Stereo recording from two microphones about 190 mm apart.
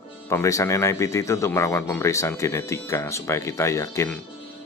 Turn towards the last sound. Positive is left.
turn(degrees=15)  # may be behind; listen again after turning